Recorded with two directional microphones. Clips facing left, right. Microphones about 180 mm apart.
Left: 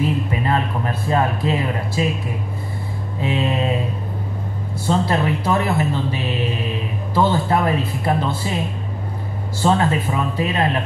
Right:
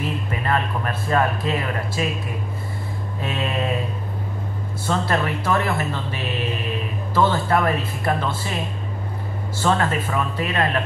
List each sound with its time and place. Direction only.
0.4 s speech: 20° left (ahead or behind)
3.2 s speech: 20° left (ahead or behind)
4.8 s speech: 20° left (ahead or behind)
9.6 s speech: 20° left (ahead or behind)